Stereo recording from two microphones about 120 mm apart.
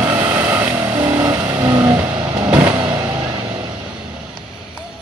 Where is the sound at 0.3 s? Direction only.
20° right (ahead or behind).